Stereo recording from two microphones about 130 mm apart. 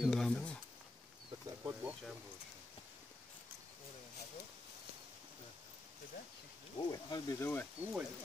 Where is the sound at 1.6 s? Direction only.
10° right (ahead or behind).